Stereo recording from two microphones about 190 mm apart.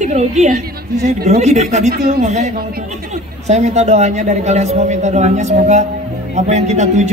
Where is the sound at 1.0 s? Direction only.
55° right (ahead or behind).